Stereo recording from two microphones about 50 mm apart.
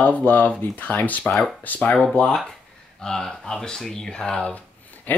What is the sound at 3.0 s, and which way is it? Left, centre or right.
Speech, centre.